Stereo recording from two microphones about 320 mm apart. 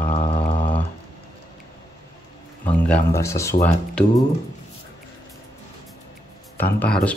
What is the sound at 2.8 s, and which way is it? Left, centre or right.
Speech, centre.